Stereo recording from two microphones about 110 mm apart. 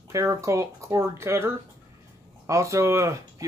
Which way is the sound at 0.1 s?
30° right (ahead or behind).